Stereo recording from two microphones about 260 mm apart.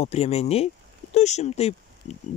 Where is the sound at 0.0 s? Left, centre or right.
Left.